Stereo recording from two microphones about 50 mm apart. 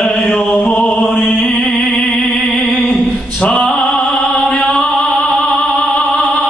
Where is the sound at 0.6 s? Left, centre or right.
Centre.